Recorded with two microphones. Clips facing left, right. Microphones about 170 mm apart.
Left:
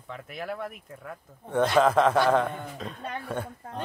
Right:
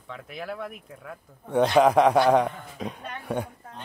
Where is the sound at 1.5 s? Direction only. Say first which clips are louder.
Right 3 dB; 15° right (ahead or behind).